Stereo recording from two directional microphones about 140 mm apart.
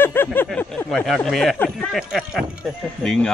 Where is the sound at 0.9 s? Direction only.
Centre (ahead or behind).